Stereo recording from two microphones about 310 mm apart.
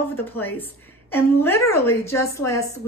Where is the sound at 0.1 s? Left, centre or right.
Centre.